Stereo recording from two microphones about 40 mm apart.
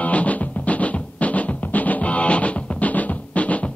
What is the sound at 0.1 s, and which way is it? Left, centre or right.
Music, left.